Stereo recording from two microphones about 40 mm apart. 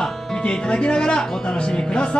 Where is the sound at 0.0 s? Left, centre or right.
Centre.